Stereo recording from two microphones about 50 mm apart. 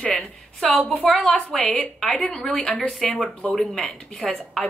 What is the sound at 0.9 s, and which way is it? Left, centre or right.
Speech, left.